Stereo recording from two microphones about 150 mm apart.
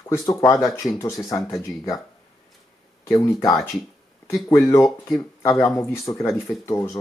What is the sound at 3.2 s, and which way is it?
Speech, 20° left (ahead or behind).